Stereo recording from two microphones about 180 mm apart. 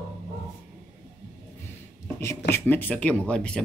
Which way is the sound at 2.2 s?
15° left (ahead or behind).